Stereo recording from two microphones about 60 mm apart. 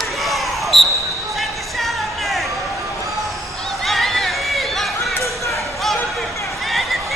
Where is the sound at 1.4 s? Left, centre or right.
Centre.